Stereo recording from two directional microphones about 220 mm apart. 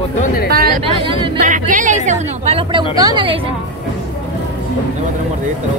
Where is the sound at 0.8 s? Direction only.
25° right (ahead or behind).